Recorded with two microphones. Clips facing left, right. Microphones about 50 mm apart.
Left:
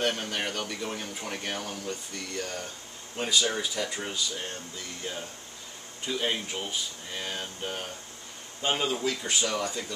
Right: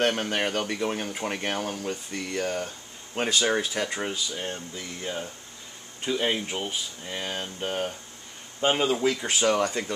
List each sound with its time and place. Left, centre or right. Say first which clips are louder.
0.1 s speech: right 5 dB; right
3.2 s speech: right 3 dB; right
6.0 s a sound: right 4 dB; right
9.2 s speech: right 6 dB; right